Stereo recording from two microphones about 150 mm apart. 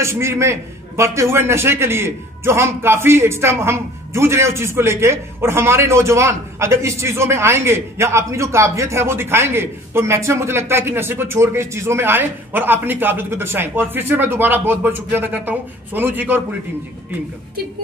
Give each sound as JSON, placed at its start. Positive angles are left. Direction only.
{"t": 0.0, "sound": "a man's voice", "side_deg": -15}